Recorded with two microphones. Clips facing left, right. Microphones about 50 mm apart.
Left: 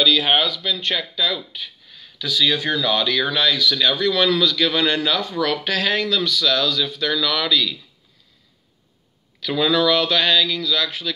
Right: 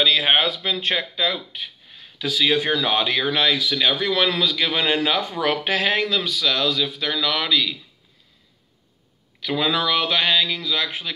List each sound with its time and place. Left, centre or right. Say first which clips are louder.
0.2 s speech: even; right
1.5 s a sound: even; right
2.5 s speech: even; right
9.4 s speech: left 3 dB; centre